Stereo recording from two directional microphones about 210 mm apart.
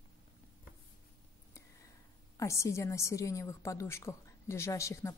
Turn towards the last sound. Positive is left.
turn(degrees=15)  # may be behind; listen again after turning